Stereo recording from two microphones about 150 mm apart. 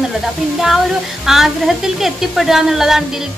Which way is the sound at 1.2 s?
Centre (ahead or behind).